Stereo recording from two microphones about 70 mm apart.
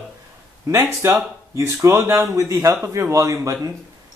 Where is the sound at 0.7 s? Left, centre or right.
Right.